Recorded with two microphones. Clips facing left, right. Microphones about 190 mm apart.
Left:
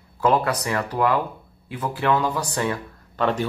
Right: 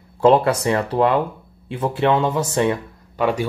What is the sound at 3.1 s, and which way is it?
Speech, 10° right (ahead or behind).